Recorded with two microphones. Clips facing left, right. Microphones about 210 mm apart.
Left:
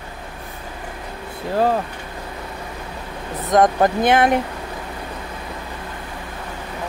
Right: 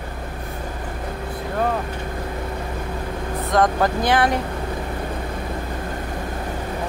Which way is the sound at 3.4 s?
20° left (ahead or behind).